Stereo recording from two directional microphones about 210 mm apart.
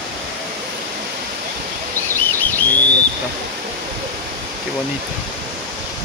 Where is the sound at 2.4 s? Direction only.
10° left (ahead or behind).